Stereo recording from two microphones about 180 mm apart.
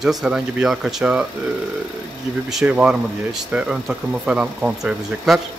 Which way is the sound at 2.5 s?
5° right (ahead or behind).